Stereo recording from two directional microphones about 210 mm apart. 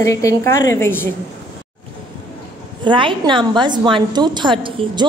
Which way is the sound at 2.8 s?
25° right (ahead or behind).